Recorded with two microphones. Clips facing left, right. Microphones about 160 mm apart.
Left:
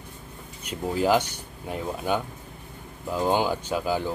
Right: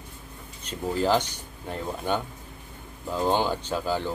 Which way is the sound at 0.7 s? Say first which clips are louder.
Left 1 dB; 10° left (ahead or behind).